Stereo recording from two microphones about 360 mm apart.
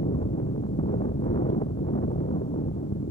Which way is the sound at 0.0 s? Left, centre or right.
Centre.